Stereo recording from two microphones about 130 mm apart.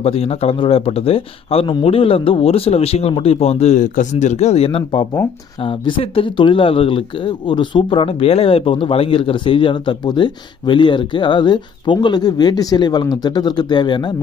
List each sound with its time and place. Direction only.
0.0 s a man's voice: 50° left (ahead or behind)